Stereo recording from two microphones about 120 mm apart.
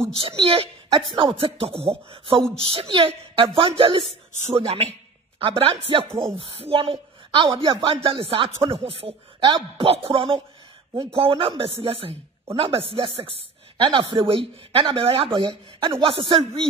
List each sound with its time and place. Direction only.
0.4 s speech: 50° right (ahead or behind)
5.4 s speech: 45° right (ahead or behind)
8.5 s speech: 25° right (ahead or behind)
8.8 s speech: 50° right (ahead or behind)